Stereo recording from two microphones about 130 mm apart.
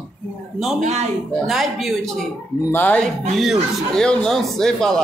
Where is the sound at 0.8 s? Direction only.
60° right (ahead or behind).